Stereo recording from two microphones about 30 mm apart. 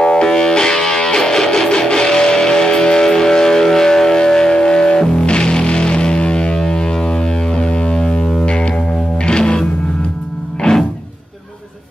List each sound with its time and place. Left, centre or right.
0.0 s music: left
9.2 s music: left
10.6 s music: centre